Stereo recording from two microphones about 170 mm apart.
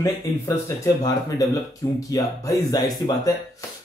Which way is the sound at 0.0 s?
20° left (ahead or behind).